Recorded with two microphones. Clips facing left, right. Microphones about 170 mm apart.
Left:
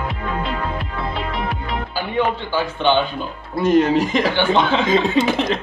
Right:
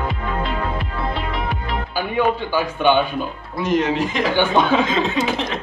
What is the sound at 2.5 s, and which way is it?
Speech, 10° right (ahead or behind).